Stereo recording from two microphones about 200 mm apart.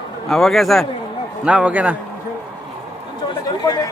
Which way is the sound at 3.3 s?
20° left (ahead or behind).